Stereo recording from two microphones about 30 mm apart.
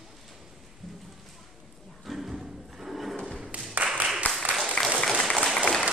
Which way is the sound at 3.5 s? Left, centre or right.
Right.